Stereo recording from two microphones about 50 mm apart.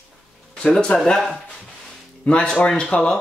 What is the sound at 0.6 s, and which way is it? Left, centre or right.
Speech, centre.